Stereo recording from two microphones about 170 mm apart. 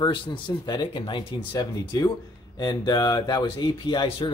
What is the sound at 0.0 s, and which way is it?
Speech, 30° left (ahead or behind).